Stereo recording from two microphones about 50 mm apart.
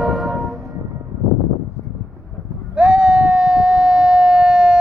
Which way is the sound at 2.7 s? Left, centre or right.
Centre.